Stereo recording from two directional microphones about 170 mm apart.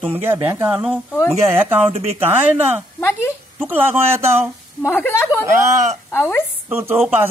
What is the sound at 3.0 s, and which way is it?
Speech, 15° left (ahead or behind).